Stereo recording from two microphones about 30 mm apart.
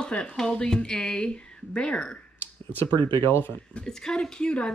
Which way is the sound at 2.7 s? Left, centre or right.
Left.